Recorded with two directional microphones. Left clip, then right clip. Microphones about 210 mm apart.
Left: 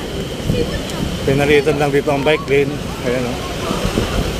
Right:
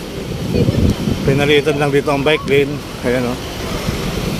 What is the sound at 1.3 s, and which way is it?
Speech, 10° right (ahead or behind).